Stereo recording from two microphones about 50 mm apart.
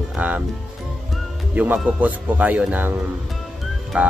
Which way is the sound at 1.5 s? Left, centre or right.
Right.